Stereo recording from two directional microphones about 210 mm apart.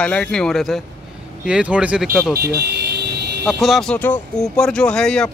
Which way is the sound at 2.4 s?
50° right (ahead or behind).